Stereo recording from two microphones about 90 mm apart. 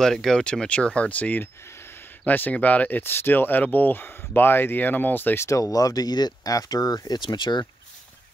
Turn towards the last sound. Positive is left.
turn(degrees=55)  # may be behind; listen again after turning